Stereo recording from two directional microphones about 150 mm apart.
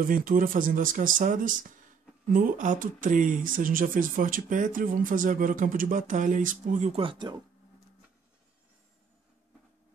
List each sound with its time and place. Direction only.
0.0 s speech: 70° right (ahead or behind)
6.9 s speech: 35° right (ahead or behind)